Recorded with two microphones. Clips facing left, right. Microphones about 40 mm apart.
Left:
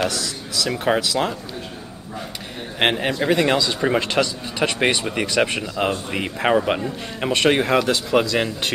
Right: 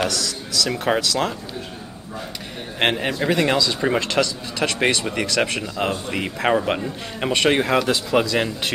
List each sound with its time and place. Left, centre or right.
0.1 s speech: left
0.7 s a man's voice: centre
1.0 s speech: centre
2.8 s a man's voice: centre